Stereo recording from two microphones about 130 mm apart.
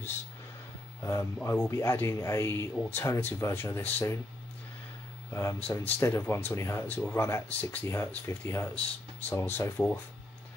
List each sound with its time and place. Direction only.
1.0 s speech: 20° left (ahead or behind)
5.3 s speech: 20° left (ahead or behind)